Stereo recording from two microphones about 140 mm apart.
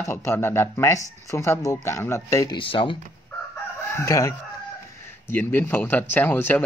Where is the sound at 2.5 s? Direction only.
40° left (ahead or behind).